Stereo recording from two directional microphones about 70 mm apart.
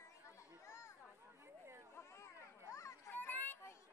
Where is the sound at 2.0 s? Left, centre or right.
Left.